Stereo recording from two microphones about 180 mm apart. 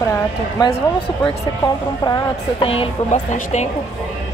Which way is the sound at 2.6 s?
30° left (ahead or behind).